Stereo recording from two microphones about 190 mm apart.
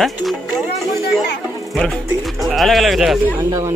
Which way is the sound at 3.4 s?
20° right (ahead or behind).